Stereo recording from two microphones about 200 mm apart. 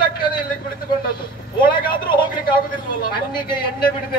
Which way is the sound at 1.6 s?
25° left (ahead or behind).